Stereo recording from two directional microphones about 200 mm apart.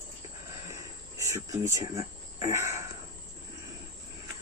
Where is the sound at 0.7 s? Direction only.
15° right (ahead or behind).